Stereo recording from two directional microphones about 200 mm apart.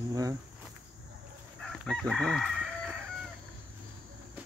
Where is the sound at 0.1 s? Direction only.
15° right (ahead or behind).